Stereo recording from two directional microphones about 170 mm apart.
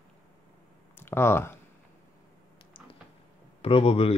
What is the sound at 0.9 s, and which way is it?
Speech, 15° left (ahead or behind).